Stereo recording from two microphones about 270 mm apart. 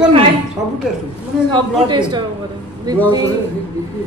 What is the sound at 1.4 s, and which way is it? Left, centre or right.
Speech, centre.